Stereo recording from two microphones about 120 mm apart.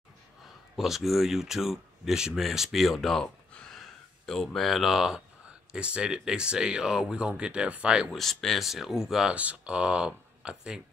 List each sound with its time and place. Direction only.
0.7 s speech: centre (ahead or behind)